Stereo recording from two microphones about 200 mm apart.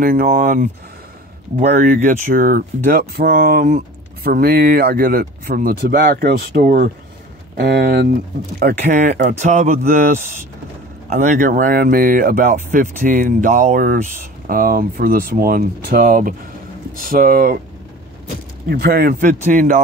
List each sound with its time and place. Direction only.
0.0 s speech: 45° right (ahead or behind)
11.1 s speech: 40° right (ahead or behind)
18.7 s speech: 50° right (ahead or behind)